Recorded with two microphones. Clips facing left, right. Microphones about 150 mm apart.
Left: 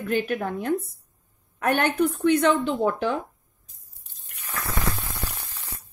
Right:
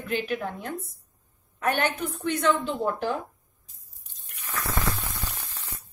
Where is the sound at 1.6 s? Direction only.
55° left (ahead or behind).